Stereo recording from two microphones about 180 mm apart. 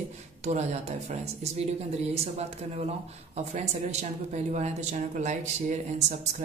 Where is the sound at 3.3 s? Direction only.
35° right (ahead or behind).